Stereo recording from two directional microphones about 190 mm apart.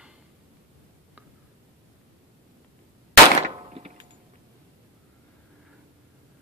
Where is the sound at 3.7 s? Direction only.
30° right (ahead or behind).